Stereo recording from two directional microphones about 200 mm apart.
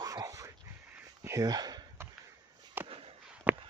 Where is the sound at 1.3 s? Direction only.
20° right (ahead or behind).